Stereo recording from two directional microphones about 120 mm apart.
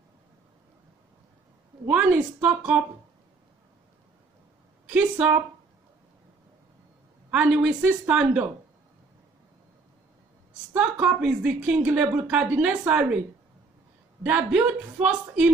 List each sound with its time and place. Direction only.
1.9 s a woman's voice: 10° right (ahead or behind)
7.2 s a woman's voice: 10° right (ahead or behind)
10.7 s a woman's voice: 10° right (ahead or behind)
14.2 s a woman's voice: 10° right (ahead or behind)